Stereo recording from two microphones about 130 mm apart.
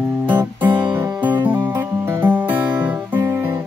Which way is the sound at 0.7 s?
35° right (ahead or behind).